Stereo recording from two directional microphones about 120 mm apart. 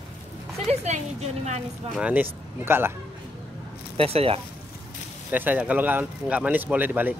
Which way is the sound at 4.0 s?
55° right (ahead or behind).